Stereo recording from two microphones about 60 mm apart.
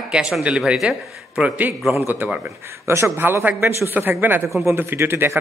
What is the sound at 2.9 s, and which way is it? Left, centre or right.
A man's voice, right.